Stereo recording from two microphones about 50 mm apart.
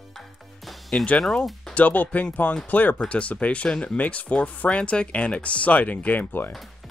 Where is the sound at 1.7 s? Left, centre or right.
Left.